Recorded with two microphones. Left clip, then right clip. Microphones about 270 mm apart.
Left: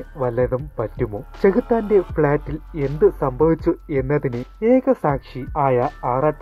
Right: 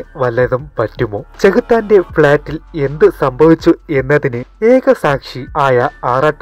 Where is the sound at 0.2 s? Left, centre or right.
Right.